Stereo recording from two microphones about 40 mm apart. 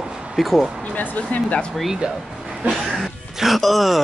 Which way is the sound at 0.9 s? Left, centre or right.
Left.